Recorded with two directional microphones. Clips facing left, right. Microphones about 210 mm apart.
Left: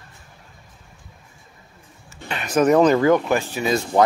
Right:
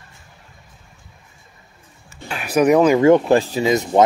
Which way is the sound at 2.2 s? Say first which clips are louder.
Right 2 dB; 5° right (ahead or behind).